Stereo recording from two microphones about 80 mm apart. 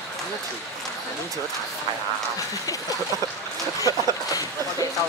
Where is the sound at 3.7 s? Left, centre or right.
Left.